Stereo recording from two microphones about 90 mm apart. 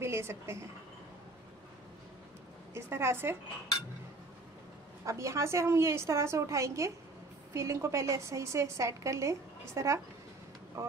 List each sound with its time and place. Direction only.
0.0 s a woman's voice: 30° right (ahead or behind)
2.7 s a woman's voice: 30° right (ahead or behind)
5.0 s a woman's voice: 35° right (ahead or behind)